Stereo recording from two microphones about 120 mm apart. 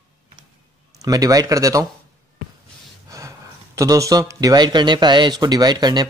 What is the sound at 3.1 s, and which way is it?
Speech, 25° right (ahead or behind).